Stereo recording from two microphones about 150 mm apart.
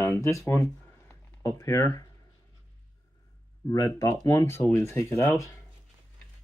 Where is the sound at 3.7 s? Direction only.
20° left (ahead or behind).